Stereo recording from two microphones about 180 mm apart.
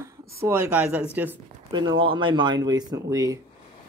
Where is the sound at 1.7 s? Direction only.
25° right (ahead or behind).